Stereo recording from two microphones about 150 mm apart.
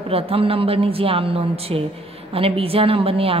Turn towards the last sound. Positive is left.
turn(degrees=-40)  # may be behind; listen again after turning